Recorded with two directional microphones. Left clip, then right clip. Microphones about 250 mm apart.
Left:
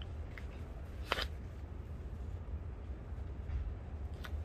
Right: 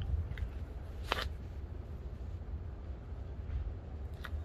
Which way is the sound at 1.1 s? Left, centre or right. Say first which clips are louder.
Right 1 dB; centre.